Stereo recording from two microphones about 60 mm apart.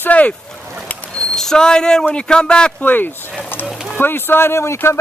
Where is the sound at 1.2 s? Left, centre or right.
Centre.